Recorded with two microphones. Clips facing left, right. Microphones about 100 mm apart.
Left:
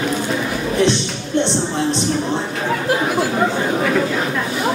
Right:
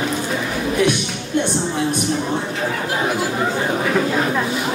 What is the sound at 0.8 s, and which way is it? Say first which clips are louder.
Music: left 3 dB; 25° left (ahead or behind).